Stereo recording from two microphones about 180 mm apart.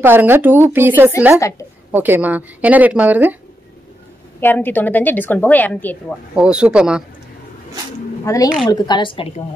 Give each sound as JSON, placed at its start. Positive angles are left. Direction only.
{"t": 0.0, "sound": "a woman's voice", "side_deg": -10}
{"t": 4.4, "sound": "a woman's voice", "side_deg": 10}
{"t": 6.3, "sound": "speech", "side_deg": -5}
{"t": 8.3, "sound": "a woman's voice", "side_deg": 20}